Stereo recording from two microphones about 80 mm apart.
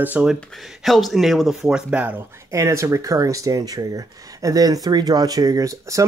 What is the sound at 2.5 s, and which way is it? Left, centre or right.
Speech, right.